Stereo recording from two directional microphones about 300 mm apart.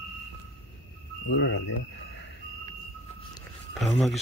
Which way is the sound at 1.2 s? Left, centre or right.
Left.